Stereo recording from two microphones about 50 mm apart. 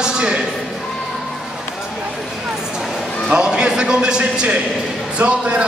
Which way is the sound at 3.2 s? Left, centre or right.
Centre.